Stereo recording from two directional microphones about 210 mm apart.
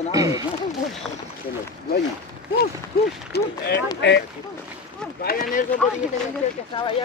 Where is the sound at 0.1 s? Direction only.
15° right (ahead or behind).